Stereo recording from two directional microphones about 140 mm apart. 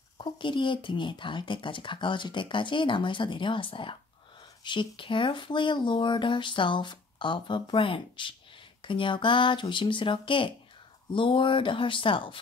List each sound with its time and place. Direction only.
0.2 s speech: 35° left (ahead or behind)